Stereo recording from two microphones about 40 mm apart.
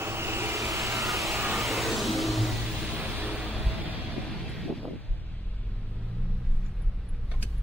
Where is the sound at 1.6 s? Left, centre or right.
Centre.